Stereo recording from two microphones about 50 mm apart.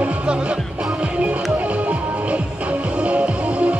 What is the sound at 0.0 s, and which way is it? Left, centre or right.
Music, right.